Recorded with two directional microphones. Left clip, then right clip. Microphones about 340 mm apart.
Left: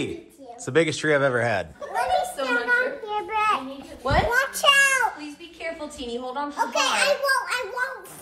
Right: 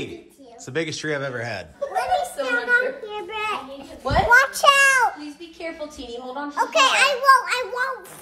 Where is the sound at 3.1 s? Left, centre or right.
Centre.